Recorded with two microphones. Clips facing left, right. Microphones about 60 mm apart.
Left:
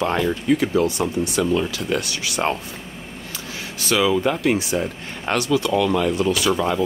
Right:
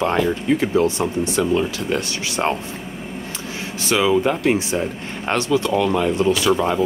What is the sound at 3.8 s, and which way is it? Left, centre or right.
Speech, right.